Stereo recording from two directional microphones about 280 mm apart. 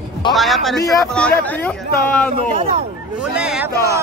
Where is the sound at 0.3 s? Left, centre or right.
Centre.